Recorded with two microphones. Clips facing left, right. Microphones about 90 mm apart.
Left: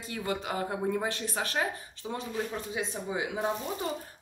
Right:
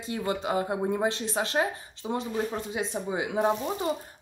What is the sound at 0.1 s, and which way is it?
Speech, 25° right (ahead or behind).